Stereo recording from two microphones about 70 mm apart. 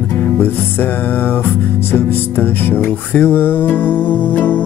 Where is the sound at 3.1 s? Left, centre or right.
Left.